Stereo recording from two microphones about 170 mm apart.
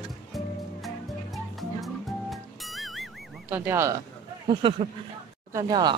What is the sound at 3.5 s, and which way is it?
Speech, 15° right (ahead or behind).